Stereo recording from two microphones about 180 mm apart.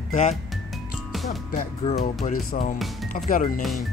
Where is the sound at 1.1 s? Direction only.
Centre (ahead or behind).